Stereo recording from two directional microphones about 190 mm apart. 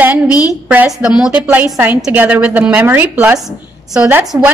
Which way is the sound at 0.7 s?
10° right (ahead or behind).